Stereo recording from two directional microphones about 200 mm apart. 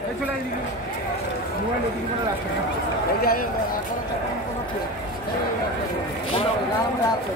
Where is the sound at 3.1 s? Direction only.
50° left (ahead or behind).